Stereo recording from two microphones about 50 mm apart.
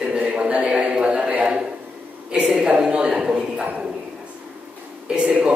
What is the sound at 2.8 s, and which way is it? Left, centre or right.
Speech, centre.